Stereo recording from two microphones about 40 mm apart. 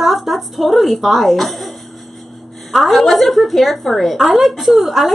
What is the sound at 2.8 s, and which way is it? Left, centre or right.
Speech, centre.